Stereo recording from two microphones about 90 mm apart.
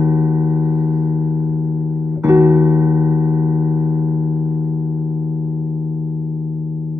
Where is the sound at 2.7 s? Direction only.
30° right (ahead or behind).